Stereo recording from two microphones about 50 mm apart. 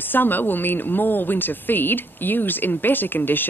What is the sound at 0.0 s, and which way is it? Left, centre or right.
Speech, left.